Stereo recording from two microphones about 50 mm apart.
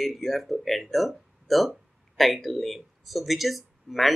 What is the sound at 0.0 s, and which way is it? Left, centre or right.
Speech, centre.